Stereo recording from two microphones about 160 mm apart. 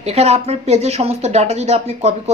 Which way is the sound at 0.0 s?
40° right (ahead or behind).